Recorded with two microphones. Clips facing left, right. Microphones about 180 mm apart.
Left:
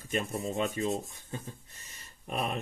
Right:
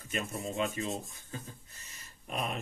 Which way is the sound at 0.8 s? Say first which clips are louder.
Left 5 dB; 35° left (ahead or behind).